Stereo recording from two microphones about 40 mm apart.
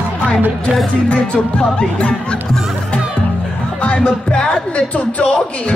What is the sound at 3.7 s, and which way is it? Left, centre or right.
A man's voice, left.